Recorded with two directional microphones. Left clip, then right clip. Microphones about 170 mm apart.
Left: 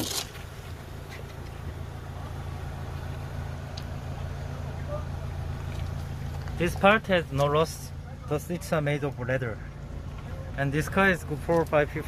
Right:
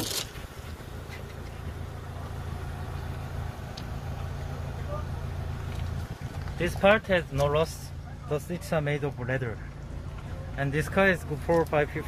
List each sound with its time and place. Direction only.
6.6 s speech: 20° left (ahead or behind); by 9.6 s 5° left (ahead or behind)
10.6 s speech: 5° left (ahead or behind)